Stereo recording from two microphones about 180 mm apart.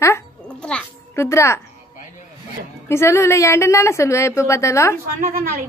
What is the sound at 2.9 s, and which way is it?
A woman's voice, 15° left (ahead or behind).